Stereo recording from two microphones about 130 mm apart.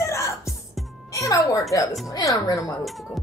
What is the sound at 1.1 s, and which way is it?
Music, 25° left (ahead or behind).